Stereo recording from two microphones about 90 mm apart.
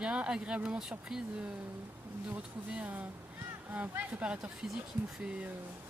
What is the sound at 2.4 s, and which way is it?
Speech, 15° right (ahead or behind).